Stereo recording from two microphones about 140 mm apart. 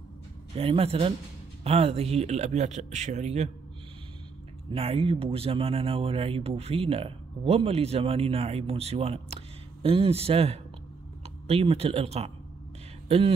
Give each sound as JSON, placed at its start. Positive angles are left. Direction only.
{"t": 0.6, "sound": "speech", "side_deg": -45}
{"t": 4.6, "sound": "speech", "side_deg": -40}